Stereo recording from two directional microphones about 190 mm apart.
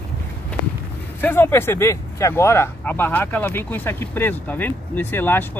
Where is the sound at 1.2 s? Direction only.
10° left (ahead or behind).